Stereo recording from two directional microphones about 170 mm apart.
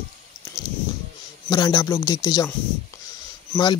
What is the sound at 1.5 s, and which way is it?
Speech, 25° left (ahead or behind).